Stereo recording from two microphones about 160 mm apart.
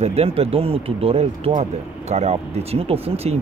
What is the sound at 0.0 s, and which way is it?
Speech, 40° right (ahead or behind).